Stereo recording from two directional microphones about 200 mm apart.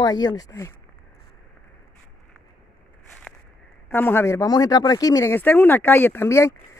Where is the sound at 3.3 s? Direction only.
5° left (ahead or behind).